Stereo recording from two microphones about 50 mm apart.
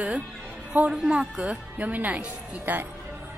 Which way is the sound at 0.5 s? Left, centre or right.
Right.